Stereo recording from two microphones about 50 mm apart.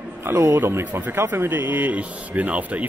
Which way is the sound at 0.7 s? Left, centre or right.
Right.